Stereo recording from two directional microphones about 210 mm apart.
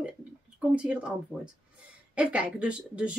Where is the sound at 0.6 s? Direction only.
5° right (ahead or behind).